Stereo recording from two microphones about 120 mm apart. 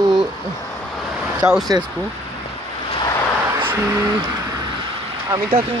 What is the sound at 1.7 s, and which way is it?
Speech, 30° right (ahead or behind).